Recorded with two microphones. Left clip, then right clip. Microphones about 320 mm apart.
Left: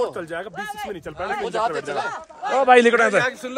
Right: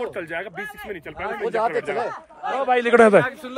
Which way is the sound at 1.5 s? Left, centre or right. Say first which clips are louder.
Right 4 dB; centre.